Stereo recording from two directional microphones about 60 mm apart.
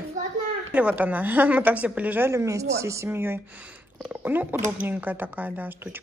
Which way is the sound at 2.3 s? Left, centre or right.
Right.